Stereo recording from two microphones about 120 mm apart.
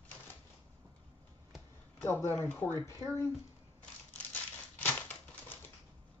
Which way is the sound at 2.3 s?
15° left (ahead or behind).